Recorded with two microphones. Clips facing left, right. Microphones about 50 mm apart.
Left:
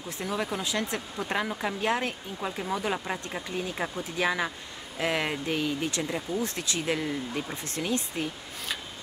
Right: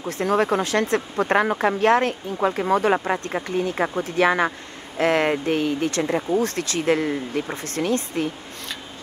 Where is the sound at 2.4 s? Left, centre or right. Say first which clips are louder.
Right 11 dB; right.